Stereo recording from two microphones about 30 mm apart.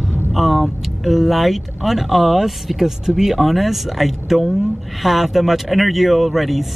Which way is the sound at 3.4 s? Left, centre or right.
Centre.